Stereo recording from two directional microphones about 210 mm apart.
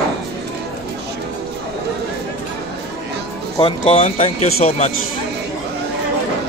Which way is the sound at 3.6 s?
25° left (ahead or behind).